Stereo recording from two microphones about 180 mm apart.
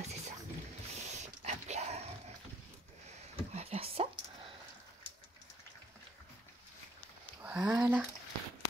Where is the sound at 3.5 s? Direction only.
35° right (ahead or behind).